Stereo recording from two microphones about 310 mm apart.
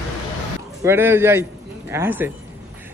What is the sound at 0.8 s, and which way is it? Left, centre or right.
Speech, centre.